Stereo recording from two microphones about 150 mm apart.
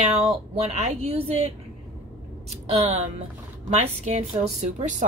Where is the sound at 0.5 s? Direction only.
45° right (ahead or behind).